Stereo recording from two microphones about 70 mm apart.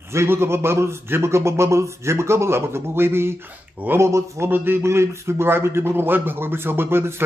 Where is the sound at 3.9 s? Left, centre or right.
Right.